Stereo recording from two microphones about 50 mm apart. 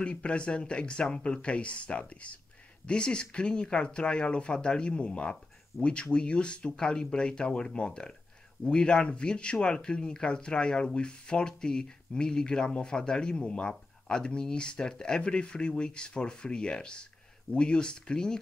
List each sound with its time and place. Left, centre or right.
0.0 s speech: left